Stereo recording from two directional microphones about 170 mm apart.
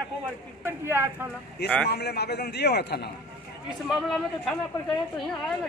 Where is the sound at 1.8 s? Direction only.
75° left (ahead or behind).